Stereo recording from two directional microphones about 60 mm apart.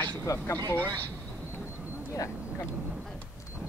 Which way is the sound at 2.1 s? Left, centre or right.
Left.